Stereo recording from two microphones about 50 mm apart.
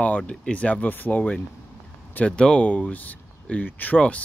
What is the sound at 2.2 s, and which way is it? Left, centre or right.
Speech, centre.